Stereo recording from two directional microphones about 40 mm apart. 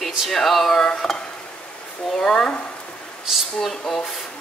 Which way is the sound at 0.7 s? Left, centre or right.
Centre.